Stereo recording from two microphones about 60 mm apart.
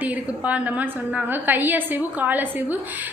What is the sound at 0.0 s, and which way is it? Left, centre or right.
A woman's voice, right.